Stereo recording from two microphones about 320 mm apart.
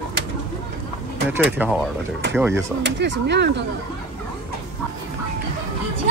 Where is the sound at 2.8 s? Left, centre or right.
Right.